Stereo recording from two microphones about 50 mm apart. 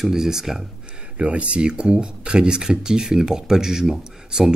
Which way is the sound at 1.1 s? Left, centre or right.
Right.